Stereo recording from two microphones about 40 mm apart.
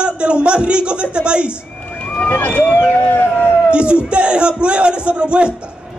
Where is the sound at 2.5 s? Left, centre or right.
Left.